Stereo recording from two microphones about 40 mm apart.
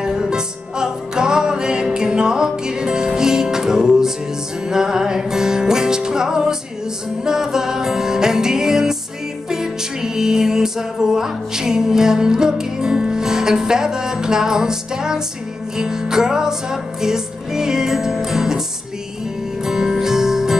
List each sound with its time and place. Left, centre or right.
0.0 s music: centre
19.6 s music: centre